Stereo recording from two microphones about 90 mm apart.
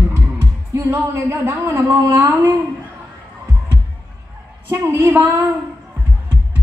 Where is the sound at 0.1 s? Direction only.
25° right (ahead or behind).